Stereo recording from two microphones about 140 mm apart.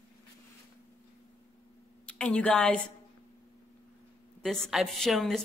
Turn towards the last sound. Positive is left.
turn(degrees=0)  # may be behind; listen again after turning